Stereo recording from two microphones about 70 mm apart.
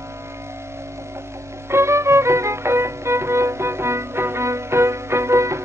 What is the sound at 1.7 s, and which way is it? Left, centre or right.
Music, right.